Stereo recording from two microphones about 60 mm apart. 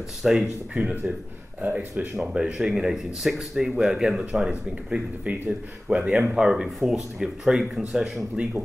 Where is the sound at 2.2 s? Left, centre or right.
Centre.